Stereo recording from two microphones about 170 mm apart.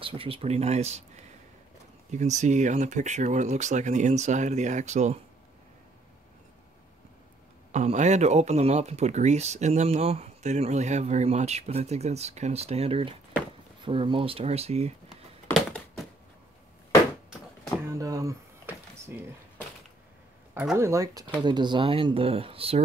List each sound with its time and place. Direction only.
0.0 s speech: 35° right (ahead or behind)
2.0 s speech: 45° right (ahead or behind)
7.7 s speech: 45° right (ahead or behind)
15.5 s crushing: 5° left (ahead or behind)
17.9 s a sound: 20° right (ahead or behind)
20.7 s speech: 15° right (ahead or behind); by 22.8 s 35° right (ahead or behind)